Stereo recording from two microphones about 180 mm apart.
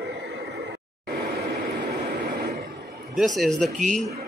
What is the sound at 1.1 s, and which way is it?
Vehicle, 55° right (ahead or behind).